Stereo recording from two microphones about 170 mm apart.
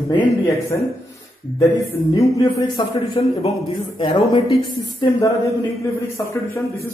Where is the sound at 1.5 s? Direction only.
20° left (ahead or behind).